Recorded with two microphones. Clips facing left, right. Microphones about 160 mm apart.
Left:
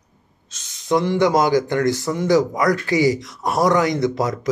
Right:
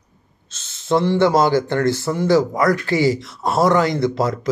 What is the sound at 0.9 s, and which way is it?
A man's voice, 15° left (ahead or behind).